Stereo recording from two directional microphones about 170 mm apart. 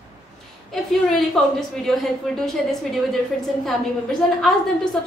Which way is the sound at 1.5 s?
Centre (ahead or behind).